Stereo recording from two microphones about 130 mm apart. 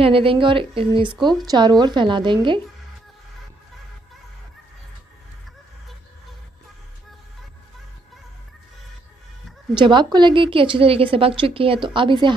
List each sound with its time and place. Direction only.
0.0 s a woman's voice: 45° right (ahead or behind)
1.4 s a woman's voice: 30° right (ahead or behind)
9.8 s a woman's voice: 35° right (ahead or behind)